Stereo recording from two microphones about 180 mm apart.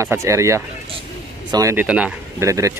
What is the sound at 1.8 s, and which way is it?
Speech, 5° right (ahead or behind).